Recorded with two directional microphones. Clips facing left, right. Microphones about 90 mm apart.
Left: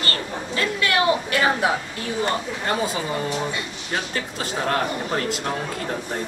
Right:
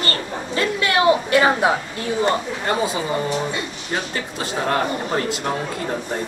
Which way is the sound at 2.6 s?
10° right (ahead or behind).